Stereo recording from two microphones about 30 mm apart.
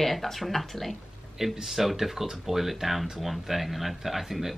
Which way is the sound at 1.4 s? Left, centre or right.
Centre.